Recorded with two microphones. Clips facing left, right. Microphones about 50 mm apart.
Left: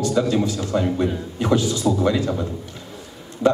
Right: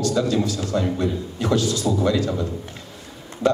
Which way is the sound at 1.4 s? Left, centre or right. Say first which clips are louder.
Left 2 dB; left.